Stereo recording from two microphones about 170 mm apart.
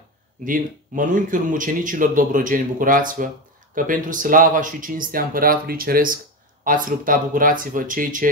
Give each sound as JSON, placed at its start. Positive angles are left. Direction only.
{"t": 0.5, "sound": "speech", "side_deg": -50}